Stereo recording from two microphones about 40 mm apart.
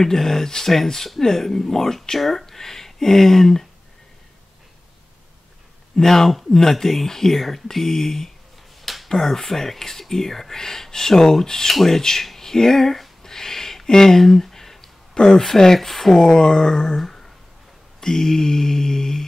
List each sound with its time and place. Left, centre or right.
0.0 s speech: centre
5.9 s speech: centre
8.8 s finger snapping: centre
9.1 s speech: centre
12.3 s a sound: centre
15.1 s speech: centre
16.2 s speech: centre